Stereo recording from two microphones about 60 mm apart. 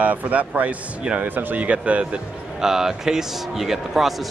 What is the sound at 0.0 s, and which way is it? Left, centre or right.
A man's voice, right.